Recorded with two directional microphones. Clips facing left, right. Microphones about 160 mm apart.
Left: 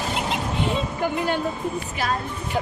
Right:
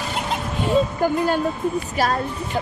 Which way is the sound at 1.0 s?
45° right (ahead or behind).